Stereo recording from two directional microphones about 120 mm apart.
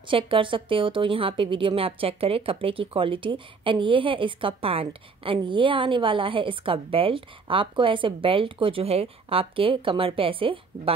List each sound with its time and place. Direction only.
0.1 s a woman's voice: 45° right (ahead or behind)